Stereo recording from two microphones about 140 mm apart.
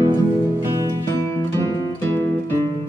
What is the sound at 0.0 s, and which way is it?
Music, 25° right (ahead or behind).